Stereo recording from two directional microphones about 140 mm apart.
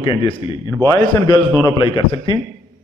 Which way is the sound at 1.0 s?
30° left (ahead or behind).